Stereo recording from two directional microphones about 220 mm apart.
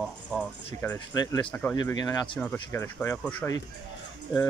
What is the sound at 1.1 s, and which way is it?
Speech, 20° left (ahead or behind).